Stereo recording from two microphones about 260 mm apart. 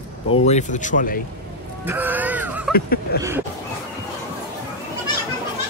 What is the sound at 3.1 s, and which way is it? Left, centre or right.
Speech, left.